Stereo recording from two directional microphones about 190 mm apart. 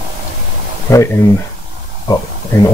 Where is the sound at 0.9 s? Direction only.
15° left (ahead or behind).